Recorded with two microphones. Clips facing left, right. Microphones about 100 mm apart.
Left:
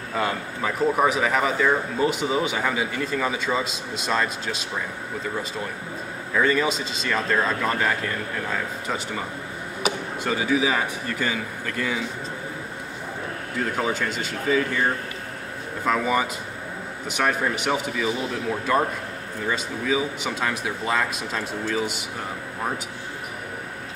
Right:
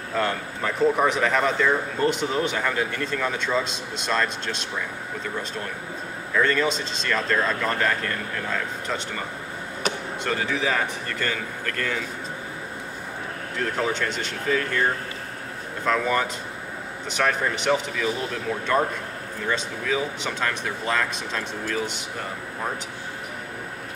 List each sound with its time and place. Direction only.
0.1 s speech: 5° left (ahead or behind)
6.3 s speech: 5° left (ahead or behind)
13.6 s speech: 5° left (ahead or behind)
15.8 s speech: 5° left (ahead or behind)